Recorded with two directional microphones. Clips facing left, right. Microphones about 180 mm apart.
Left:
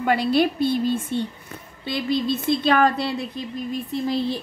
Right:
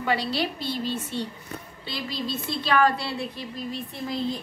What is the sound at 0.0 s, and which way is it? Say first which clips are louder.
A woman's voice: left 7 dB; 50° left (ahead or behind).